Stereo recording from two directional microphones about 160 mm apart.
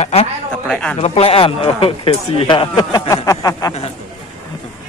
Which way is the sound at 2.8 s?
20° left (ahead or behind).